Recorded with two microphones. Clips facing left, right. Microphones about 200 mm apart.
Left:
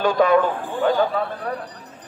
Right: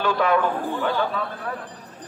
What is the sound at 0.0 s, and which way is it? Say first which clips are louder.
A man's voice: left 4 dB; 40° left (ahead or behind).